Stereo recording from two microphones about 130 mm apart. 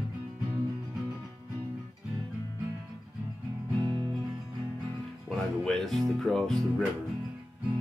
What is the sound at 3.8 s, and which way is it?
Music, 40° right (ahead or behind).